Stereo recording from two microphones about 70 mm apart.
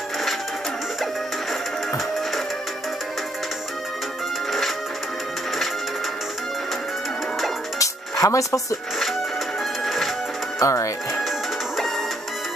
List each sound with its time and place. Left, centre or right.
4.5 s music: centre
7.8 s music: left
9.8 s music: centre
10.6 s speech: left